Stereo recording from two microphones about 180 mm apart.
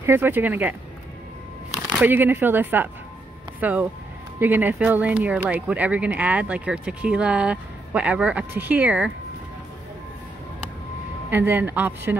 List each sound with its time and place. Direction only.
0.0 s speech: 10° right (ahead or behind)
11.2 s speech: 10° right (ahead or behind)